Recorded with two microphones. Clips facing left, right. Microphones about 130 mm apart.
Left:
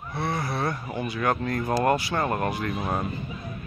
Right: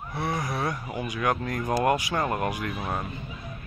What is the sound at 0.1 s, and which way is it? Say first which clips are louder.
Speech: left 1 dB; 15° right (ahead or behind).